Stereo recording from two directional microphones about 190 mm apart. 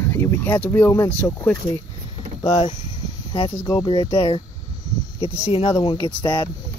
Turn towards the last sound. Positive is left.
turn(degrees=25)  # may be behind; listen again after turning